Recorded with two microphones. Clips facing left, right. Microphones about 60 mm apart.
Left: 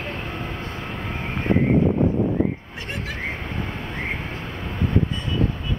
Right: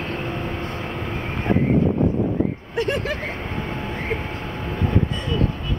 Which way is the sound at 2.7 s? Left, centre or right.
Right.